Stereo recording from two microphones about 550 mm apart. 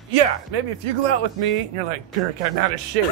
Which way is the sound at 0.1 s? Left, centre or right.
Right.